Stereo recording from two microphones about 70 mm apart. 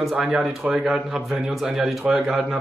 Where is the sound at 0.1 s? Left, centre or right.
Centre.